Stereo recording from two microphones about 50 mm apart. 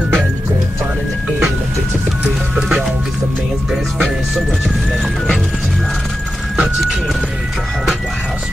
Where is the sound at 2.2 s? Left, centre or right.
Right.